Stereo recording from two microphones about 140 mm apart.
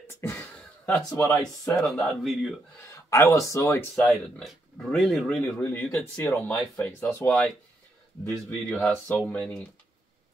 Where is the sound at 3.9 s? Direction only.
Centre (ahead or behind).